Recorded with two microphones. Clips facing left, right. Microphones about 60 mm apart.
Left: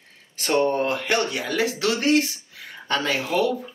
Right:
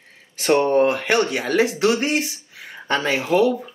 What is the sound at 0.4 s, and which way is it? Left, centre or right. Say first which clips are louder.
Speech: right 5 dB; right.